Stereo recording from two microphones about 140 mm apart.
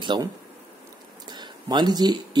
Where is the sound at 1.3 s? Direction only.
30° right (ahead or behind).